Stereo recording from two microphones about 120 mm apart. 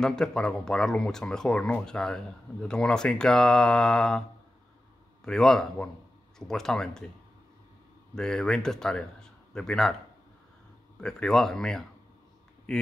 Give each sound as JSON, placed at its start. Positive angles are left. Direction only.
{"t": 0.0, "sound": "speech", "side_deg": 5}
{"t": 5.2, "sound": "speech", "side_deg": 5}
{"t": 8.1, "sound": "speech", "side_deg": 5}
{"t": 11.0, "sound": "speech", "side_deg": 5}